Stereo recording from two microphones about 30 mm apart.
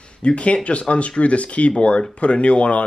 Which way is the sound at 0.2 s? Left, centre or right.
Left.